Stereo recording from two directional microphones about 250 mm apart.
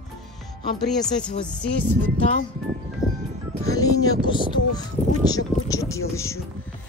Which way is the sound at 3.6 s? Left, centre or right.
Centre.